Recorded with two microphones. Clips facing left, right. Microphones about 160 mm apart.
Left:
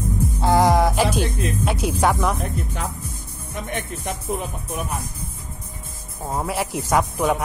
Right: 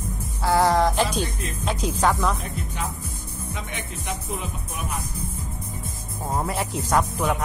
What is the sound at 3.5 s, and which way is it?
Music, 50° left (ahead or behind).